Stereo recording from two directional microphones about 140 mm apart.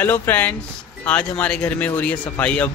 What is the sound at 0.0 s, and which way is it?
Speech, 15° left (ahead or behind).